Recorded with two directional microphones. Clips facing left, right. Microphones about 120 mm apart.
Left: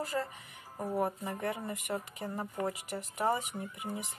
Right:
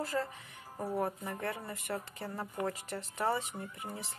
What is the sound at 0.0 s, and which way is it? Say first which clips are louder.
Speech: even; 15° left (ahead or behind).